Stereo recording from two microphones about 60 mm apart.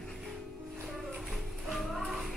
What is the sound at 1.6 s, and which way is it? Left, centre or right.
Music, centre.